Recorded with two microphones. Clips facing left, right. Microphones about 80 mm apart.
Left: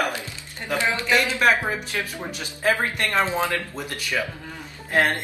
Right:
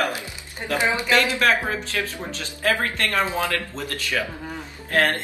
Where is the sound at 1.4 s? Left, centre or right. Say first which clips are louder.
Left 1 dB; centre.